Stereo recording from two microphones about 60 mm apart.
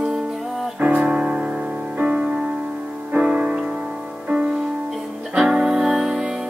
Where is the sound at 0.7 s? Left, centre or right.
Right.